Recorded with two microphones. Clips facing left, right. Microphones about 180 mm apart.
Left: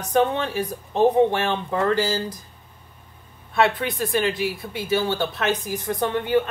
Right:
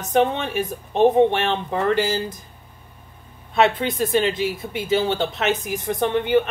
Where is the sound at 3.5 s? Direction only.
20° right (ahead or behind).